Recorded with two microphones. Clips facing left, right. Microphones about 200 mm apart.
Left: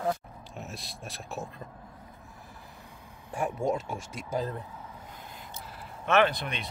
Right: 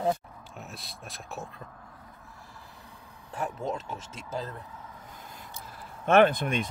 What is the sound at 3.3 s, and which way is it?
Speech, 10° left (ahead or behind).